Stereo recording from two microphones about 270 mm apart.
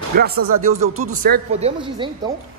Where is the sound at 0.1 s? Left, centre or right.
Right.